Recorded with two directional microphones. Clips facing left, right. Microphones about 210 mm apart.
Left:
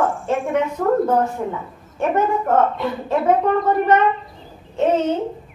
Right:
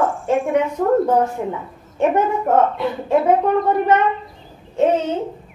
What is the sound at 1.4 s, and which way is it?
Speech, 15° right (ahead or behind).